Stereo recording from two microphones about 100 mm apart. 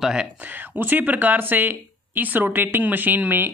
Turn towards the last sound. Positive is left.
turn(degrees=-20)  # may be behind; listen again after turning